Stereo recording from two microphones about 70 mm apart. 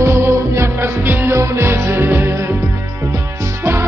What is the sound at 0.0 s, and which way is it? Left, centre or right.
Music, right.